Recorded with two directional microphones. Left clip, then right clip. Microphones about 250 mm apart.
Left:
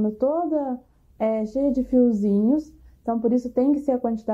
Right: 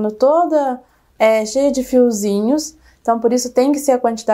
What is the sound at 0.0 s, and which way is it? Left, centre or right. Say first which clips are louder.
A woman's voice: right 10 dB; right.